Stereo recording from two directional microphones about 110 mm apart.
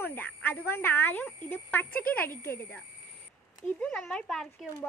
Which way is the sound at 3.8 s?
5° left (ahead or behind).